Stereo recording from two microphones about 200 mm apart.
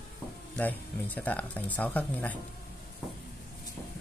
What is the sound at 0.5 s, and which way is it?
Speech, 10° left (ahead or behind).